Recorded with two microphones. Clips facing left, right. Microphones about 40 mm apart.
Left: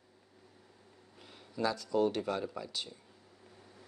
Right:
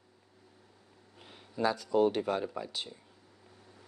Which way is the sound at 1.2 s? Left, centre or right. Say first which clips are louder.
Right 3 dB; centre.